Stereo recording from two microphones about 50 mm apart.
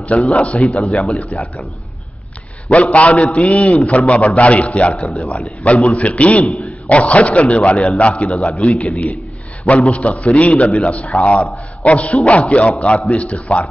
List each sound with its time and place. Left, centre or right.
0.0 s a man's voice: left
2.7 s a man's voice: left